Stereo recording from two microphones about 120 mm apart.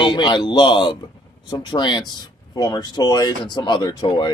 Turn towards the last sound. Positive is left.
turn(degrees=40)  # may be behind; listen again after turning